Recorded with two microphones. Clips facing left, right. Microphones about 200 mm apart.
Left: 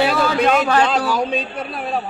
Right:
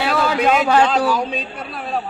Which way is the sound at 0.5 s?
10° right (ahead or behind).